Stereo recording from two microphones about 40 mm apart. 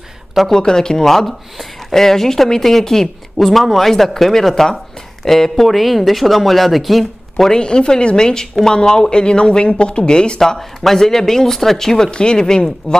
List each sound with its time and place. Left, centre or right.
0.5 s speech: centre
7.5 s speech: left
10.4 s speech: centre
12.1 s speech: left